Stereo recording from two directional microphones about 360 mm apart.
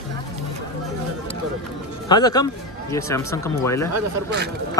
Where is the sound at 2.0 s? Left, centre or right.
Centre.